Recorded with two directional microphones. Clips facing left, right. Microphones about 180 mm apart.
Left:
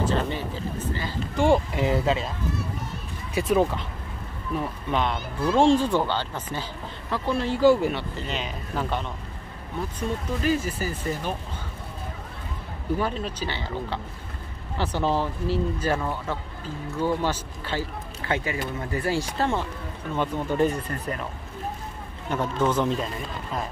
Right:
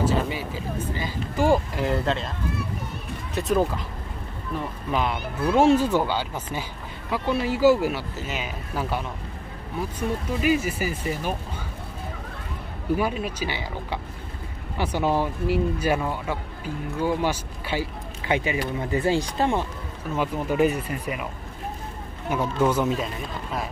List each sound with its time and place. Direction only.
0.0 s speech: 10° right (ahead or behind)
3.3 s speech: 5° left (ahead or behind)
10.4 s speech: 10° right (ahead or behind)
12.9 s speech: 10° right (ahead or behind)
20.2 s speech: 5° right (ahead or behind)
22.3 s speech: 10° right (ahead or behind)